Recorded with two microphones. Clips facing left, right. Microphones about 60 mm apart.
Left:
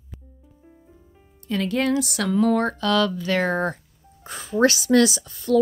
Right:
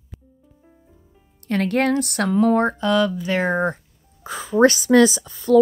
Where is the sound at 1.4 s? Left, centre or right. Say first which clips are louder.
Right 3 dB; right.